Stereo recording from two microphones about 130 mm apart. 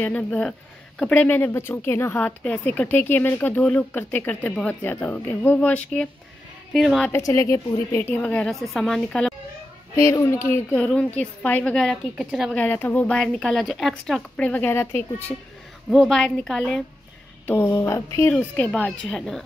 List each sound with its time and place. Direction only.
0.0 s speech: 10° left (ahead or behind)
6.7 s a woman's voice: centre (ahead or behind)
7.1 s speech: 25° left (ahead or behind); by 9.3 s 5° left (ahead or behind)
9.9 s speech: 20° left (ahead or behind); by 12.4 s 5° right (ahead or behind)
12.5 s speech: 15° left (ahead or behind)
15.9 s a woman's voice: centre (ahead or behind)
17.5 s speech: 20° left (ahead or behind)
18.3 s speech: 10° left (ahead or behind)